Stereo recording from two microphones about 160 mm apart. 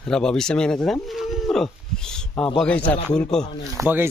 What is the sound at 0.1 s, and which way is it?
Speech, 5° left (ahead or behind).